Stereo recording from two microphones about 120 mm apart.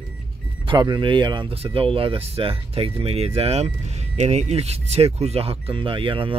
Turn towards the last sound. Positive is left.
turn(degrees=-45)  # may be behind; listen again after turning